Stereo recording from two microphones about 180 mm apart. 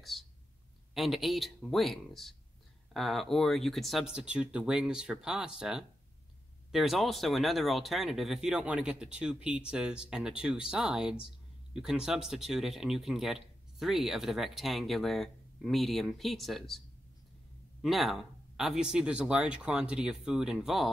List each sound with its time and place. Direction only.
0.0 s speech: centre (ahead or behind)
17.8 s speech: centre (ahead or behind)